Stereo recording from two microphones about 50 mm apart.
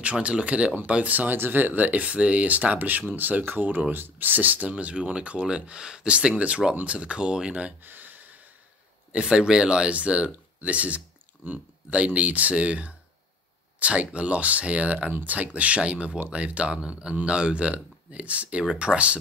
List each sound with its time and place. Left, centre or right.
0.0 s speech: right
7.8 s a sound: right
9.1 s speech: centre